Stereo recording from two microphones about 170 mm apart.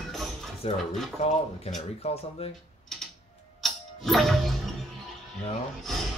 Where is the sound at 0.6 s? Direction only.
35° left (ahead or behind).